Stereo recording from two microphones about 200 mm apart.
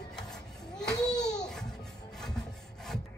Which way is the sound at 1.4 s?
5° left (ahead or behind).